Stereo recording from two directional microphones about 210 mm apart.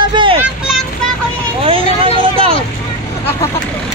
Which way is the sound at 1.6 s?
25° right (ahead or behind).